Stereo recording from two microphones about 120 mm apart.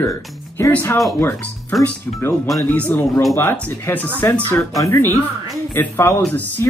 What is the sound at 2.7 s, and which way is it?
Speech, 15° left (ahead or behind).